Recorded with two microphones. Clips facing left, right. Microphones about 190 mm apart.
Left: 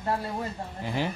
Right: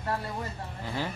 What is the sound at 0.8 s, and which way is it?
Speech, 15° left (ahead or behind).